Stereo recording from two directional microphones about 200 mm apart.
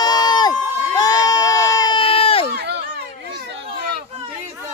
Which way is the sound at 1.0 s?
20° left (ahead or behind).